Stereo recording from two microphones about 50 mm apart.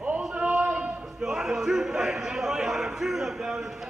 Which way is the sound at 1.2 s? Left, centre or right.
Centre.